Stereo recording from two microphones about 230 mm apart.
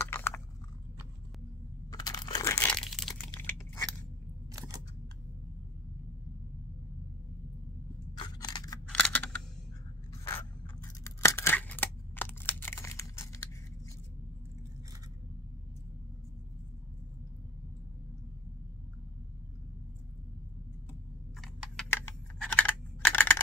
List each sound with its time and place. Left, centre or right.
0.0 s chewing: centre
1.9 s crumpling: centre
8.2 s scissors: centre
8.8 s computer keyboard: centre
10.8 s scissors: centre
21.4 s computer keyboard: centre